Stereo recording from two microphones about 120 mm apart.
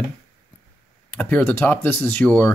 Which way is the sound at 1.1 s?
15° left (ahead or behind).